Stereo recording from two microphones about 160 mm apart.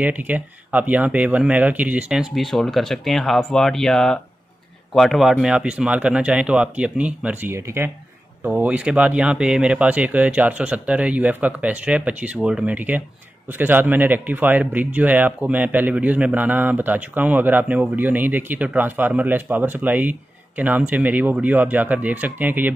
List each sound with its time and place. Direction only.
0.0 s speech: 10° right (ahead or behind)